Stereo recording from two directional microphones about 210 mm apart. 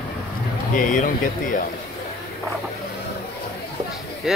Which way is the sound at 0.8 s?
40° left (ahead or behind).